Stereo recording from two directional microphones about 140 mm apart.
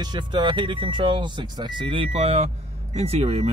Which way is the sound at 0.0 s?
30° right (ahead or behind).